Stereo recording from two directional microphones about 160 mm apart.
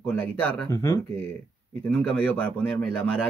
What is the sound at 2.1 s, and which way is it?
Speech, 10° left (ahead or behind).